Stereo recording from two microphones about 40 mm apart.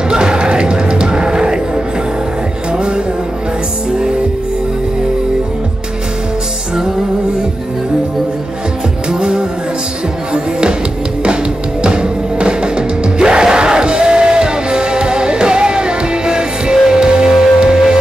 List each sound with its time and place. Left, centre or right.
0.1 s music: right
9.1 s music: centre
11.8 s music: right